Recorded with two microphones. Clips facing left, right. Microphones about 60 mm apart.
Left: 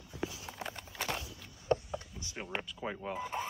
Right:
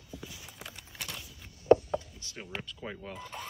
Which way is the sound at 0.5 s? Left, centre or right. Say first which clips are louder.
Left 6 dB; left.